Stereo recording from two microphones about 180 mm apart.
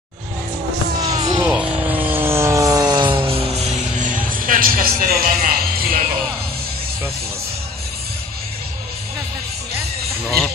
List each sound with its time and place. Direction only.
1.0 s music: 20° right (ahead or behind)
1.5 s vehicle: 10° right (ahead or behind); by 6.0 s 55° right (ahead or behind)
10.2 s a sound: 5° left (ahead or behind)